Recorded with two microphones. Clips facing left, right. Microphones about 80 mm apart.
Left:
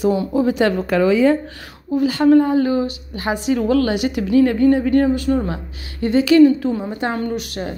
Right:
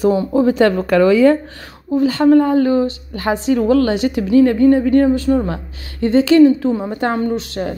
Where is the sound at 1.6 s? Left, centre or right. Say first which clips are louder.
Right 3 dB; right.